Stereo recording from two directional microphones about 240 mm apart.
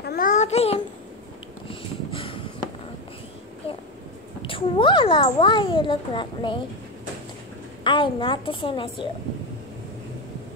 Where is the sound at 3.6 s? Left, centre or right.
Left.